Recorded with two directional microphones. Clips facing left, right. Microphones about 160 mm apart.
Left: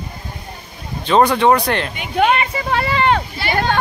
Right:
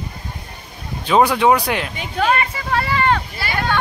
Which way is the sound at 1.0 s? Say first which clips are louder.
Left 1 dB; 5° right (ahead or behind).